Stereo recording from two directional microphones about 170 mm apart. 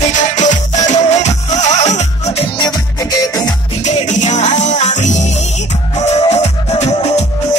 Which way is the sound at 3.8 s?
45° left (ahead or behind).